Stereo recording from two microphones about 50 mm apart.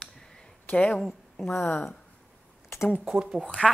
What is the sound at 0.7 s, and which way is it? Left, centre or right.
Speech, left.